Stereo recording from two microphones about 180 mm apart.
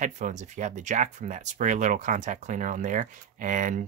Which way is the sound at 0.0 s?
45° right (ahead or behind).